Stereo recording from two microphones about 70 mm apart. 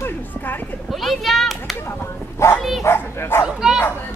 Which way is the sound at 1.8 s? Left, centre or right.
Left.